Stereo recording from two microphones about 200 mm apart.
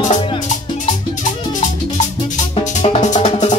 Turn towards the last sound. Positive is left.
turn(degrees=35)  # may be behind; listen again after turning